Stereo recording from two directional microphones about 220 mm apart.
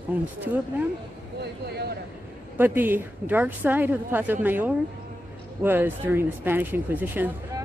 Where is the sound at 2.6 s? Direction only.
10° right (ahead or behind).